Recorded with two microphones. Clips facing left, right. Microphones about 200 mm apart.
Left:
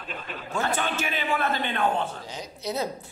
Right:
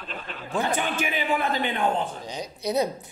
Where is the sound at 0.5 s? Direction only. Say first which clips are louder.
Right 2 dB; 15° right (ahead or behind).